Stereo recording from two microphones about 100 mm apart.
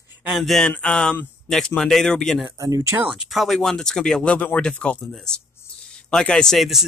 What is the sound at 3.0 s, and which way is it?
Speech, 10° right (ahead or behind).